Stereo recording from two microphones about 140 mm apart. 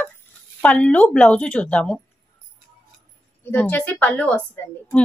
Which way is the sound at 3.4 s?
15° left (ahead or behind).